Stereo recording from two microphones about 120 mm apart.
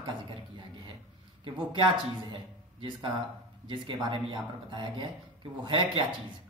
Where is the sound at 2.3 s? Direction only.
40° right (ahead or behind).